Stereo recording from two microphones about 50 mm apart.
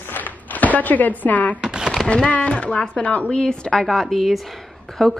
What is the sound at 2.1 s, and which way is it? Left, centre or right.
Speech, left.